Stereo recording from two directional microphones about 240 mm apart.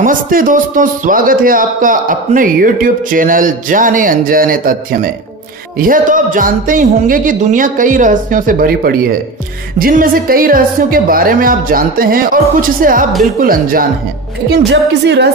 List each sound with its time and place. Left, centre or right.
0.0 s a man's voice: right